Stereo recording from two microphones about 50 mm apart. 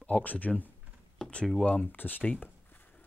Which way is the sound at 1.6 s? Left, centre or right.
Left.